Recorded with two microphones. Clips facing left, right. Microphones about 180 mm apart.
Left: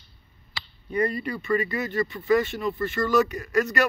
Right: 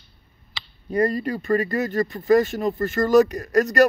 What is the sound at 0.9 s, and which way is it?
Speech, 40° right (ahead or behind).